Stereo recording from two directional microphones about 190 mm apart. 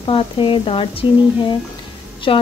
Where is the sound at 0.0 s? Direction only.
30° left (ahead or behind).